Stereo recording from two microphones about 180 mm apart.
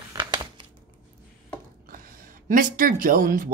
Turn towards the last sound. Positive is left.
turn(degrees=-50)  # may be behind; listen again after turning